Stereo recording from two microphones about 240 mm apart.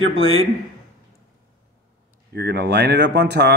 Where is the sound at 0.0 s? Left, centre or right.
Right.